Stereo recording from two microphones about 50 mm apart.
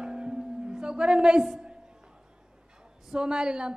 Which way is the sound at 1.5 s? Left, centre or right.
Centre.